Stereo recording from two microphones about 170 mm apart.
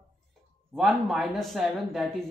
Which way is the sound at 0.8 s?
Centre (ahead or behind).